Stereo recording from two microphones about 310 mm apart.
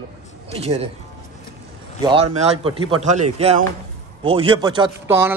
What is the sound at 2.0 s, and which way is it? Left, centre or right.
Speech, centre.